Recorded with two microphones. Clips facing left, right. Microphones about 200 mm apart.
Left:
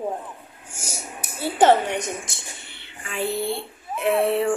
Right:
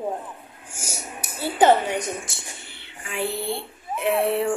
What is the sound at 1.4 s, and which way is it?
Speech, centre (ahead or behind).